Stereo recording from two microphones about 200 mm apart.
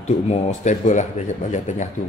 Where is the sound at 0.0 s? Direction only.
35° left (ahead or behind).